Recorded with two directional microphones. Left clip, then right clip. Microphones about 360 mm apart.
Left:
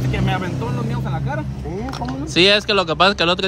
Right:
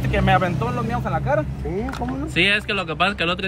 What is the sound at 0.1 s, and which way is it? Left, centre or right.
A man's voice, centre.